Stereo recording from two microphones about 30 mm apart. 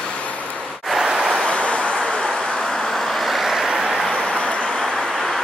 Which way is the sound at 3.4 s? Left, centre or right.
Centre.